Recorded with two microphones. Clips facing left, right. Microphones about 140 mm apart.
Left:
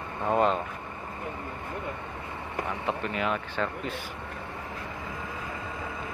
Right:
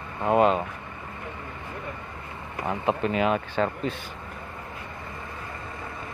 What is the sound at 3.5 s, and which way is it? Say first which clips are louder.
Speech: right 5 dB; 35° right (ahead or behind).